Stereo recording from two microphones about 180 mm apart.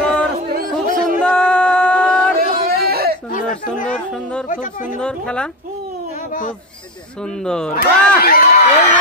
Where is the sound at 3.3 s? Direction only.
45° left (ahead or behind).